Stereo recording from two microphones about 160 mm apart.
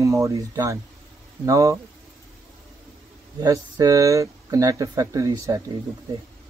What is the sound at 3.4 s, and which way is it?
Speech, 20° right (ahead or behind).